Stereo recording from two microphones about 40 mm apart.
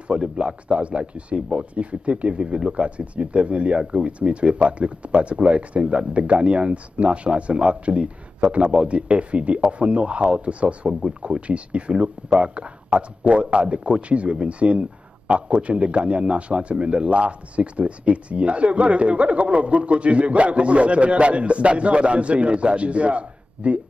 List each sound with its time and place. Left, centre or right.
0.1 s speech: right
10.9 s speech: centre
11.2 s speech: right